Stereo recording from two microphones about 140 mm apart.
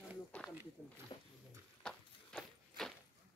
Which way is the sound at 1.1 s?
35° left (ahead or behind).